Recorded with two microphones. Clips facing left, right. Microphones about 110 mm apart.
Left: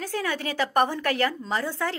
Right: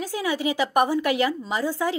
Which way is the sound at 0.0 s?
10° right (ahead or behind).